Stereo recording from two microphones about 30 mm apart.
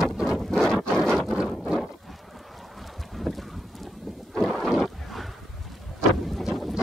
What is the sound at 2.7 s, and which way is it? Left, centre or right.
Boat, centre.